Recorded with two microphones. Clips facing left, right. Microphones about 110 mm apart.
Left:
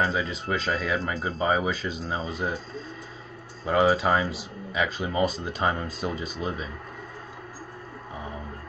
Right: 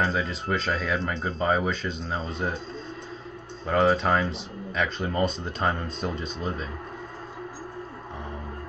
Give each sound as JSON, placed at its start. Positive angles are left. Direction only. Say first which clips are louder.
{"t": 0.0, "sound": "speech", "louder": "even", "side_deg": 0}
{"t": 3.6, "sound": "speech", "louder": "even", "side_deg": 5}